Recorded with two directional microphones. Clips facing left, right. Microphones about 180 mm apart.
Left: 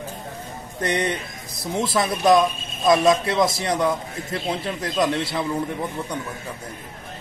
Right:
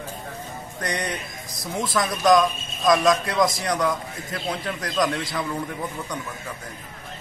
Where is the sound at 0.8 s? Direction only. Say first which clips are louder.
Left 5 dB; 25° left (ahead or behind).